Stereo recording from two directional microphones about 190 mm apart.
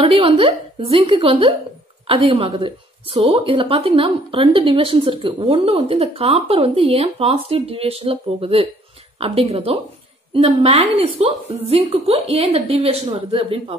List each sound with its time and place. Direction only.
0.0 s a woman's voice: 30° right (ahead or behind)